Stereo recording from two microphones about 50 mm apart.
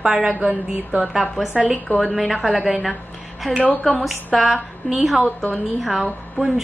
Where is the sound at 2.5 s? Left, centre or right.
Centre.